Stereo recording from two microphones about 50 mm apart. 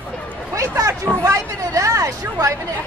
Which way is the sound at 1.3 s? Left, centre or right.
Right.